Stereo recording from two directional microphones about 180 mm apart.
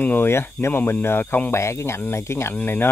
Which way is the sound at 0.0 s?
10° left (ahead or behind).